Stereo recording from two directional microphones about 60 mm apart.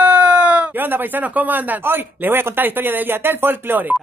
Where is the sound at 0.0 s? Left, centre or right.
Right.